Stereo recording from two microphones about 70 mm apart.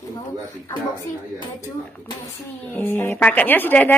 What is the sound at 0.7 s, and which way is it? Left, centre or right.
Speech, left.